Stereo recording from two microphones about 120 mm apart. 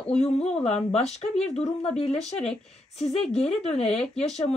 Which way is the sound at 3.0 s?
5° left (ahead or behind).